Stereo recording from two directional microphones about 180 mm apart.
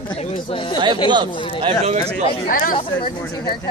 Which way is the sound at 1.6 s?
35° right (ahead or behind).